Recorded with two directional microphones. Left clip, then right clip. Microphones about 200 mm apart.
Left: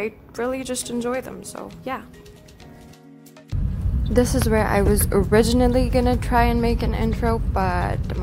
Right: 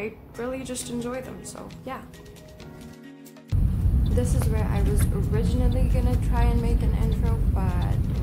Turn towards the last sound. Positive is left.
turn(degrees=45)  # may be behind; listen again after turning